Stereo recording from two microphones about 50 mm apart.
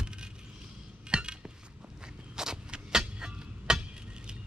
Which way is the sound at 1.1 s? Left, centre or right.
Centre.